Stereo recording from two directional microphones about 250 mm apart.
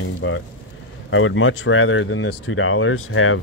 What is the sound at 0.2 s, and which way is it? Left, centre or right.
Speech, left.